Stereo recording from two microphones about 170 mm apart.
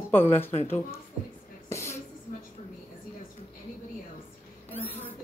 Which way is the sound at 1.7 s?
15° left (ahead or behind).